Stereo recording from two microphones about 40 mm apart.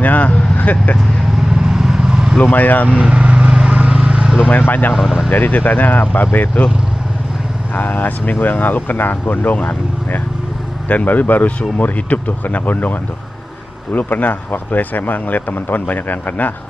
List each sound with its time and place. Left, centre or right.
0.0 s speech: left
1.7 s vehicle: centre
2.5 s speech: left
2.9 s speech: right
3.3 s vehicle: centre
3.7 s vehicle: right
4.5 s speech: left
4.9 s speech: centre
5.3 s speech: left
7.7 s speech: left
10.9 s speech: left
13.9 s speech: left